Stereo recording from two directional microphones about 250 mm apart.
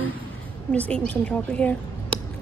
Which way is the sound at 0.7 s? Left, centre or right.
Centre.